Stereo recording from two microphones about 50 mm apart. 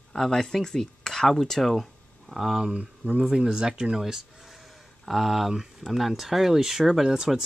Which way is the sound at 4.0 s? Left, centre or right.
Centre.